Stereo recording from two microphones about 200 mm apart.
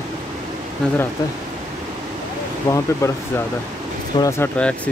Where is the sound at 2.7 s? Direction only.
15° left (ahead or behind).